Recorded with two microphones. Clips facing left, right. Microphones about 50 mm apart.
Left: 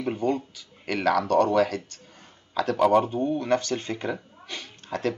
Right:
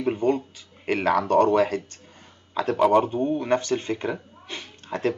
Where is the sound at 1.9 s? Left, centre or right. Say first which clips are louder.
Right 1 dB; right.